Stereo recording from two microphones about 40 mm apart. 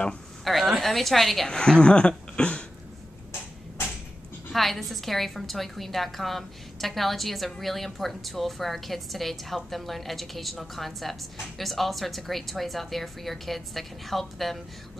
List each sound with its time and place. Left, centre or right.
0.5 s a woman's voice: centre
1.5 s speech: left
4.5 s a woman's voice: centre